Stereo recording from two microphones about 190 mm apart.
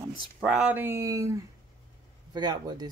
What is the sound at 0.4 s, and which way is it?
Speech, 5° right (ahead or behind).